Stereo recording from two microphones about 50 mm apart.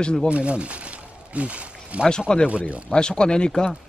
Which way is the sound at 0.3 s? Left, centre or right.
Right.